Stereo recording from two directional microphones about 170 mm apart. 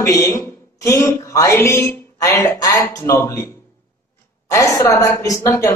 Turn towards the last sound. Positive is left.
turn(degrees=20)  # may be behind; listen again after turning